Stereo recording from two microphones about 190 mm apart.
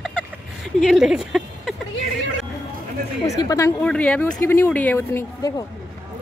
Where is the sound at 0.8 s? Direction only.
Centre (ahead or behind).